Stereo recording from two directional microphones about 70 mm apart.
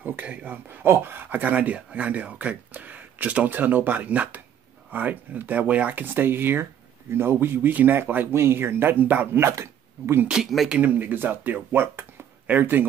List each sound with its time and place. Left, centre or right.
0.0 s speech: right
9.4 s speech: right
10.4 s a man's voice: centre
10.8 s speech: right